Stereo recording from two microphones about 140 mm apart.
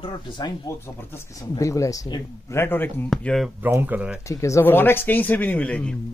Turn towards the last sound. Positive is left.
turn(degrees=5)  # may be behind; listen again after turning